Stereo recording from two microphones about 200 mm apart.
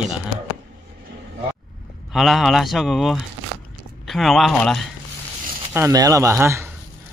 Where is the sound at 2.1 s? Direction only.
Centre (ahead or behind).